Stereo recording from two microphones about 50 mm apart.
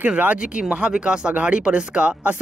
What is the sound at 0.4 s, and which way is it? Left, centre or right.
Speech, right.